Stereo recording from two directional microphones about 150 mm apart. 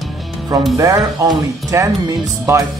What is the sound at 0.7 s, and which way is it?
Speech, 20° right (ahead or behind).